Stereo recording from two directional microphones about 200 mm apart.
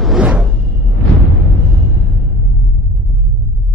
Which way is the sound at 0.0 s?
5° right (ahead or behind).